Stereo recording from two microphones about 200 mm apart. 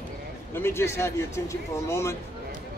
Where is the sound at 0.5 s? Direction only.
10° left (ahead or behind).